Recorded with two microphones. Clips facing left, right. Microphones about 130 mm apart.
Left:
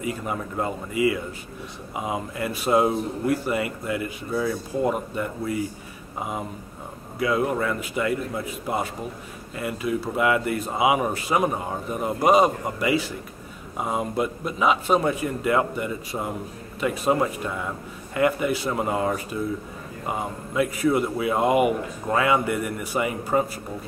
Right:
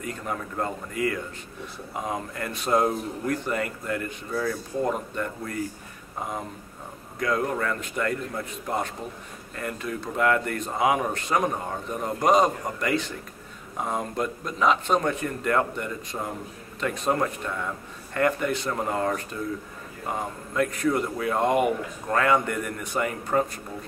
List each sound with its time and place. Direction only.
0.0 s a man's voice: 5° left (ahead or behind)